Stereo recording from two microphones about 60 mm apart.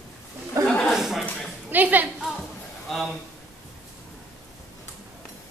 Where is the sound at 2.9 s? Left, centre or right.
Centre.